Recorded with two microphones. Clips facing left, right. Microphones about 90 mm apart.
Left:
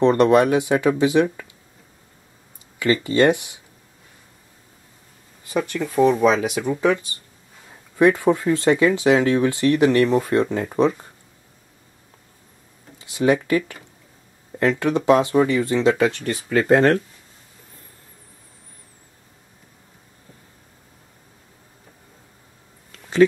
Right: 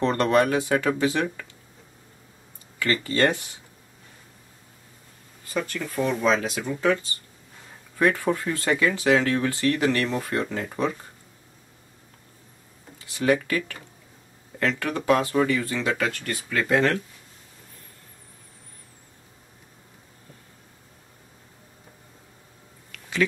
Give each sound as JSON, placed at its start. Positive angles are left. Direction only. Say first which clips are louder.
{"t": 0.0, "sound": "speech", "louder": "left 6 dB", "side_deg": 20}
{"t": 2.8, "sound": "speech", "louder": "left 5 dB", "side_deg": 20}
{"t": 5.5, "sound": "speech", "louder": "left 5 dB", "side_deg": 15}
{"t": 13.0, "sound": "speech", "louder": "left 4 dB", "side_deg": 20}
{"t": 16.4, "sound": "speech", "louder": "left 6 dB", "side_deg": 40}
{"t": 22.8, "sound": "a sound", "louder": "left 9 dB", "side_deg": 35}